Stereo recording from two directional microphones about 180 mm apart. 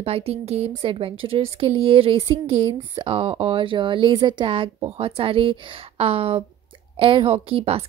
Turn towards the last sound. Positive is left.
turn(degrees=-30)  # may be behind; listen again after turning